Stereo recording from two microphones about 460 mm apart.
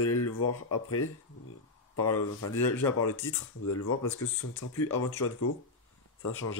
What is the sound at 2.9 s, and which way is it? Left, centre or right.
Speech, left.